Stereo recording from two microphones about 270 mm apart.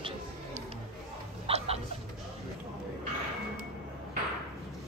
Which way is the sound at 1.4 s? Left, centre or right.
Right.